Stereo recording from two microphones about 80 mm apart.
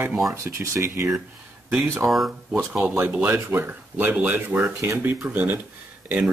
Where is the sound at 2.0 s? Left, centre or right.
Centre.